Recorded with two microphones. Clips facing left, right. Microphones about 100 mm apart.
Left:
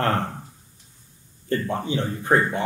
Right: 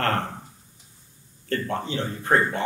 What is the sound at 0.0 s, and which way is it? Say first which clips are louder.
Speech: left 2 dB; 15° left (ahead or behind).